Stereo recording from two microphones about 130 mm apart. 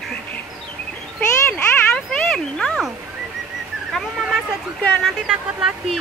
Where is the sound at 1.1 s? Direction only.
10° left (ahead or behind).